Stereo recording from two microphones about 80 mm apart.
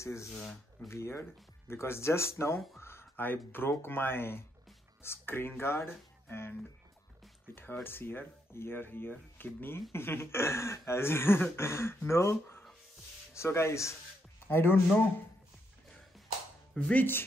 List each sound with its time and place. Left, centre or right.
0.0 s speech: left
0.4 s speech: centre
0.8 s speech: left
7.8 s speech: left
16.7 s speech: centre